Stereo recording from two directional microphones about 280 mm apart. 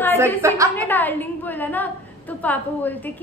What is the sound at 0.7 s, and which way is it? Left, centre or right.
A woman's voice, centre.